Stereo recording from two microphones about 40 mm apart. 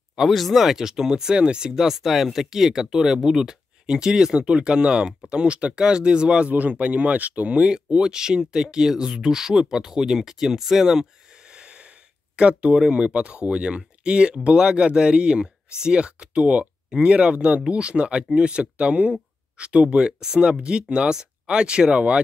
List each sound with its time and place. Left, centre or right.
0.3 s speech: centre; by 6.5 s right
6.5 s speech: right; by 11.1 s centre
11.3 s a sound: right
13.5 s speech: right